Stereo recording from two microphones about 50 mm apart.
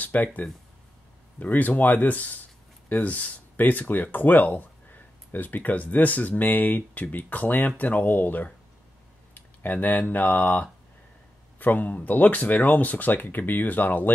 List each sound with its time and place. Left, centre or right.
0.0 s speech: left